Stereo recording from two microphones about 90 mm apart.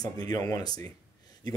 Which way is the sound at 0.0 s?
45° left (ahead or behind).